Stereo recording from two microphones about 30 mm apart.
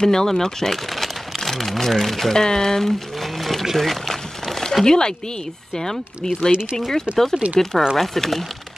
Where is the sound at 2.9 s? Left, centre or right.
Centre.